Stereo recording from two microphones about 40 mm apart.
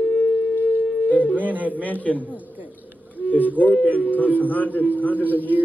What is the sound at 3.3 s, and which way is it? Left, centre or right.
A man's voice, left.